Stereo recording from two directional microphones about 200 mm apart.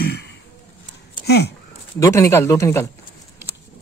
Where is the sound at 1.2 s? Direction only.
55° left (ahead or behind).